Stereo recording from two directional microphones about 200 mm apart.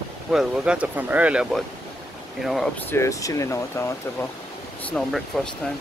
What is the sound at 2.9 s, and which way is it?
Speech, 15° left (ahead or behind).